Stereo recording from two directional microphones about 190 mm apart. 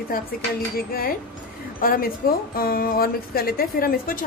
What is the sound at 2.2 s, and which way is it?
A woman's voice, 50° left (ahead or behind).